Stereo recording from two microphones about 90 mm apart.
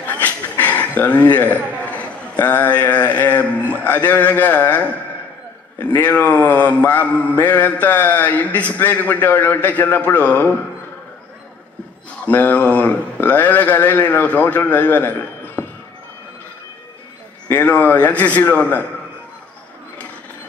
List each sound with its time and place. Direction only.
0.0 s a man's voice: 20° left (ahead or behind)
5.9 s mantra: 20° left (ahead or behind)
12.3 s speech: 20° left (ahead or behind)
17.5 s mantra: 20° left (ahead or behind)